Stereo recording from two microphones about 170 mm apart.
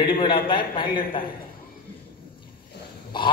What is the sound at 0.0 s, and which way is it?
Speech, 30° left (ahead or behind).